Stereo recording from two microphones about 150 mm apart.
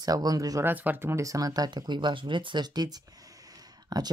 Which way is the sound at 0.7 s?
10° right (ahead or behind).